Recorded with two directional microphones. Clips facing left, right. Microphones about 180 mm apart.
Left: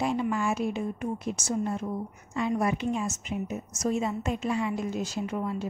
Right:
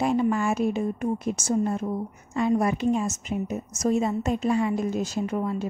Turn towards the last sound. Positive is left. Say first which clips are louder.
# right 4 dB
turn(degrees=-45)  # may be behind; listen again after turning